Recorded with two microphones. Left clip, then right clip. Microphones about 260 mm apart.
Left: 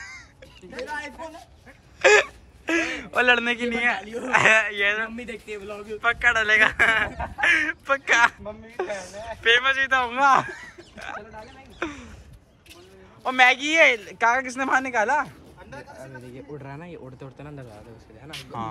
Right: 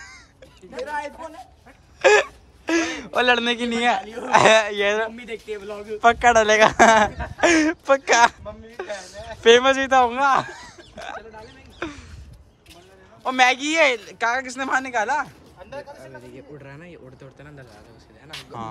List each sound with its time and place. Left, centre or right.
0.8 s speech: centre
2.0 s a sound: centre
4.2 s speech: centre
5.2 s a man's voice: centre
5.9 s speech: right
8.8 s speech: centre
9.4 s speech: right
11.8 s a sound: centre
13.2 s speech: centre
16.5 s speech: centre
18.3 s a man's voice: centre